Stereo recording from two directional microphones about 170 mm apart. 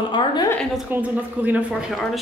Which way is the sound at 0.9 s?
10° right (ahead or behind).